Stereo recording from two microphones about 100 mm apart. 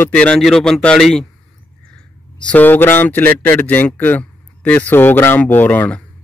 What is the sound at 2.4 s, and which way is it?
A man's voice, 15° left (ahead or behind).